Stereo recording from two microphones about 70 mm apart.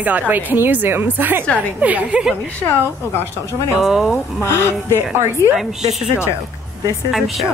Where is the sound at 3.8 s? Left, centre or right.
Centre.